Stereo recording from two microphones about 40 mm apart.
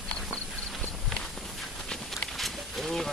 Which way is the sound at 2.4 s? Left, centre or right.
Centre.